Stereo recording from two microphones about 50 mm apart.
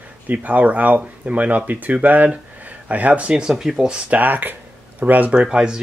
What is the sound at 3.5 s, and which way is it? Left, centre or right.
Speech, centre.